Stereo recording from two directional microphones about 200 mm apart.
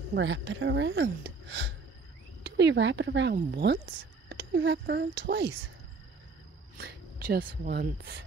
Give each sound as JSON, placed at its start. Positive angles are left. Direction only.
{"t": 0.1, "sound": "speech", "side_deg": -65}
{"t": 6.8, "sound": "speech", "side_deg": -45}